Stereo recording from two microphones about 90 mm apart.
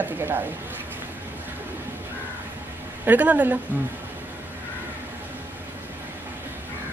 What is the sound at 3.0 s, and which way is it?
Speech, 20° right (ahead or behind).